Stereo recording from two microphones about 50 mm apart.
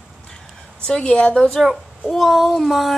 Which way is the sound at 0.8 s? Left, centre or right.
Centre.